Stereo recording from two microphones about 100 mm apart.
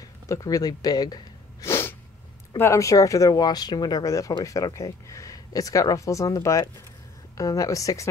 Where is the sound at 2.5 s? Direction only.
30° left (ahead or behind).